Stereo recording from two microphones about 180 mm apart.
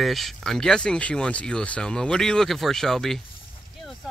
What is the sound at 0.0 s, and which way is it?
Speech, centre (ahead or behind).